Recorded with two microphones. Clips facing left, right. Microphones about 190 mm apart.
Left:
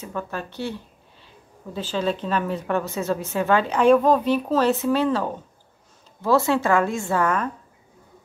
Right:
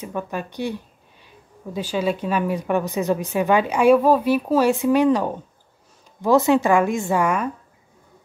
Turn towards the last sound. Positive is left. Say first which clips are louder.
# right 2 dB
turn(degrees=-10)  # may be behind; listen again after turning